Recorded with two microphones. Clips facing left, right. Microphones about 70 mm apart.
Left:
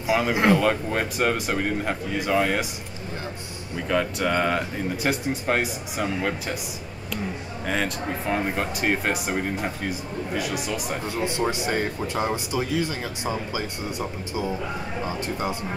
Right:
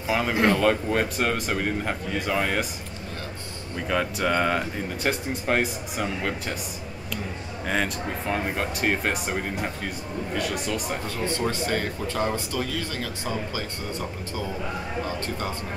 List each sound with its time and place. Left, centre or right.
0.0 s speech: centre
3.9 s speech: centre
7.6 s speech: centre
11.1 s speech: centre
15.0 s speech: centre